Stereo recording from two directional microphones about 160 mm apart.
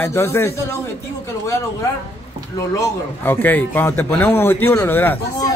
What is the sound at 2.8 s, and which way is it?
A man's voice, 10° left (ahead or behind).